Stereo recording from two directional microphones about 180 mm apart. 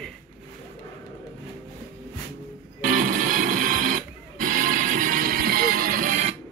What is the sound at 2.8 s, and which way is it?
Music, 50° right (ahead or behind).